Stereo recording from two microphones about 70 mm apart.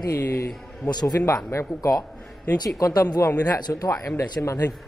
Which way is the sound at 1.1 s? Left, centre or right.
Left.